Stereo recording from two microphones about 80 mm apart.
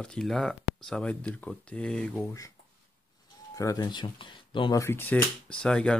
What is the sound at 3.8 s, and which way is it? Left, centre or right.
Speech, left.